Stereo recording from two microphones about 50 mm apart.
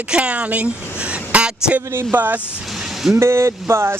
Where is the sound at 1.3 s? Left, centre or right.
Right.